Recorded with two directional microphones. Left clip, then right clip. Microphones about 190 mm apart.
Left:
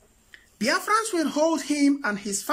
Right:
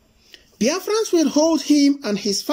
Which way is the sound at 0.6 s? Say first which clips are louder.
Right 2 dB; 10° right (ahead or behind).